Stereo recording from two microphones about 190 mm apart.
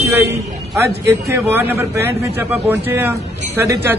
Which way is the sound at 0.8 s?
15° right (ahead or behind).